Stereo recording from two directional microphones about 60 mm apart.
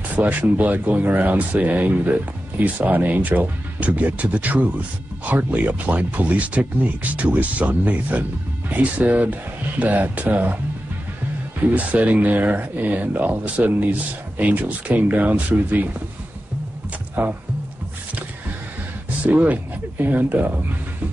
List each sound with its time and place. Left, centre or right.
0.1 s speech: right
11.7 s speech: right
17.1 s speech: right
19.2 s speech: right